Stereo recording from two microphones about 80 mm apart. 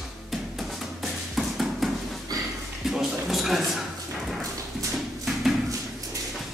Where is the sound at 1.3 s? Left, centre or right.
Centre.